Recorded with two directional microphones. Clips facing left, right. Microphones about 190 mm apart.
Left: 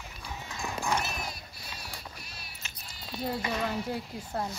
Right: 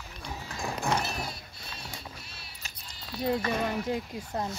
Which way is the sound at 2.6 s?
40° right (ahead or behind).